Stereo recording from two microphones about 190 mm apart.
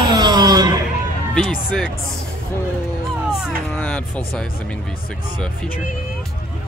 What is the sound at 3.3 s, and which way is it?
Speech, 5° left (ahead or behind).